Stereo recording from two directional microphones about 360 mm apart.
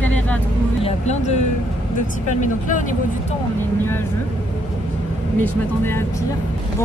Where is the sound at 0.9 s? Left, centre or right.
Centre.